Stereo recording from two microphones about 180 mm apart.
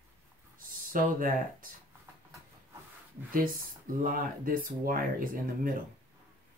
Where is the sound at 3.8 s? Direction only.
50° right (ahead or behind).